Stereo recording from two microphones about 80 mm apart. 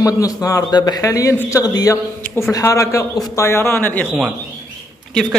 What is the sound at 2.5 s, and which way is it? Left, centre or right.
A man's voice, left.